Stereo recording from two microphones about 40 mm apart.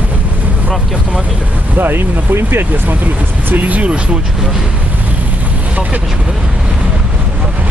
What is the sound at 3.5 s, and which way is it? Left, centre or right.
Speech, right.